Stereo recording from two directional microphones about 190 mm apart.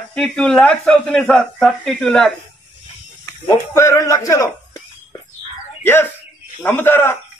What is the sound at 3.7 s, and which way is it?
Speech, 15° left (ahead or behind).